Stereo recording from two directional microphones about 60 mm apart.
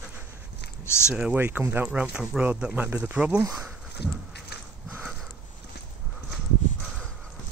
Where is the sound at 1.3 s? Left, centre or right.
Right.